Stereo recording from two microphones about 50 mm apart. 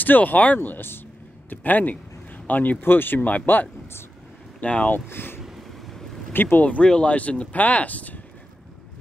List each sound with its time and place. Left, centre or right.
0.0 s speech: left
0.6 s speech: left
4.6 s speech: left
4.9 s speech: left
5.4 s a sound: centre
6.3 s speech: left
6.6 s speech: left